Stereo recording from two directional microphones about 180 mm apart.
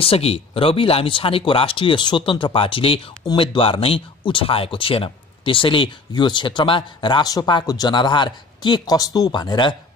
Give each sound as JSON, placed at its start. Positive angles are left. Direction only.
{"t": 0.0, "sound": "speech", "side_deg": 30}